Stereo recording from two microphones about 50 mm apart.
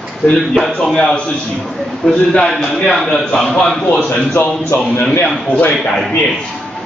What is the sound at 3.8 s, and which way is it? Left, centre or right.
Speech, left.